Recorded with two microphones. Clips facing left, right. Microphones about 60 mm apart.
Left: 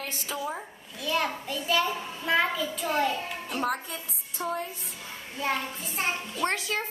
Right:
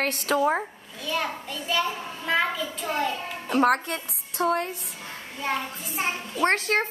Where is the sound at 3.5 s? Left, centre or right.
Right.